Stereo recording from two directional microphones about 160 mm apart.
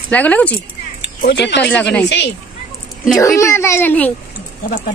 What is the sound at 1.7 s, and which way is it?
Speech, 5° left (ahead or behind).